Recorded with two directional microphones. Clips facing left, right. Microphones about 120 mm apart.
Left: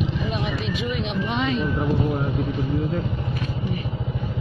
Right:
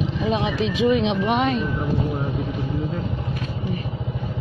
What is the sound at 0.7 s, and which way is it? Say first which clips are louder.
Speech: right 7 dB; 80° right.